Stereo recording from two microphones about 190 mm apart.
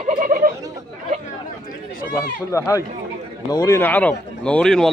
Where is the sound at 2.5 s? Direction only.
15° left (ahead or behind).